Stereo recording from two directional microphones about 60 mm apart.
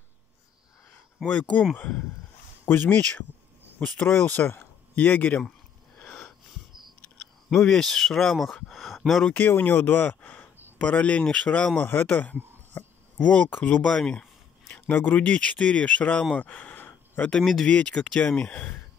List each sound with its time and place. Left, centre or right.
1.2 s speech: left
2.6 s speech: left
4.1 s speech: left
7.4 s speech: centre
9.5 s speech: left
13.8 s speech: centre
14.9 s speech: left
16.3 s a sound: left
17.4 s speech: centre
17.6 s speech: centre